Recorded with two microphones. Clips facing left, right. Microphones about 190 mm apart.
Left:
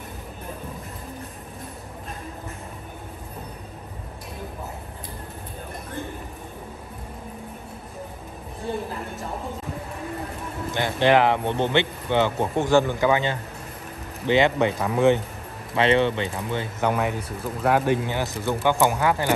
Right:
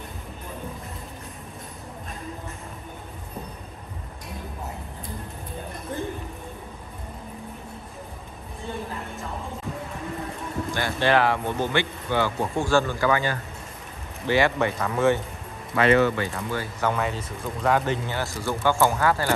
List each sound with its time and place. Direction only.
10.7 s speech: 20° left (ahead or behind)
17.4 s speech: 5° left (ahead or behind)
18.0 s speech: 15° left (ahead or behind)